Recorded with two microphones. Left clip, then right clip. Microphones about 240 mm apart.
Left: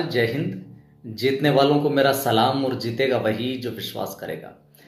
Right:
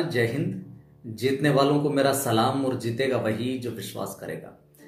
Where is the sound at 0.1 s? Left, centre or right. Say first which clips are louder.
Left 3 dB; centre.